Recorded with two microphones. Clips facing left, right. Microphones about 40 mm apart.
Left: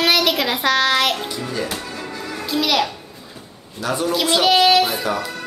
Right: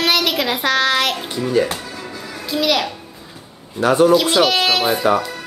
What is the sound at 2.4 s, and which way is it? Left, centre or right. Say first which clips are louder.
Speech: right 1 dB; centre.